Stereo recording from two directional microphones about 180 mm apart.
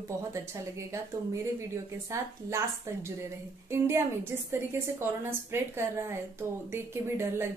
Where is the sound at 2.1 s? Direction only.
15° right (ahead or behind).